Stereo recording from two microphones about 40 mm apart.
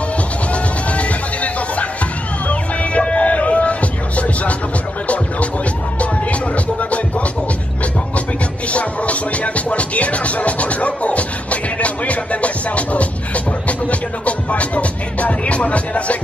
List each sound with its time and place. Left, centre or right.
0.5 s music: left
6.5 s music: left
8.7 s music: left